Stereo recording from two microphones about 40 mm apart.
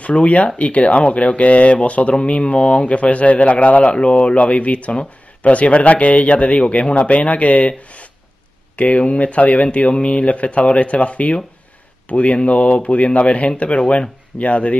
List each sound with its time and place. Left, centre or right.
0.0 s speech: left